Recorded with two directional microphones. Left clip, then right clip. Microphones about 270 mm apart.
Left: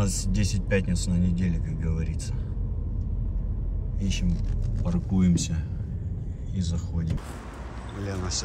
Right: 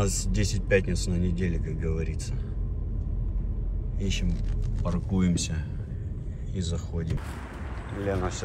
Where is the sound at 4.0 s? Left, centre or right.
Centre.